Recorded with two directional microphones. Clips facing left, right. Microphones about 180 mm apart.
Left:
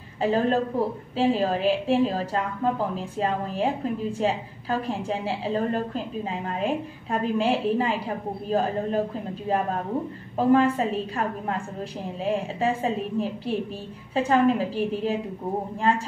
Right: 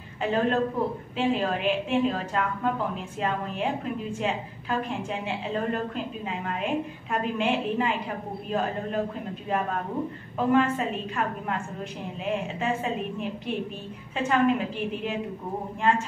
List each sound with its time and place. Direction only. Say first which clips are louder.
0.2 s a woman's voice: left 2 dB; 35° left (ahead or behind)
10.3 s a woman's voice: left 3 dB; 35° left (ahead or behind)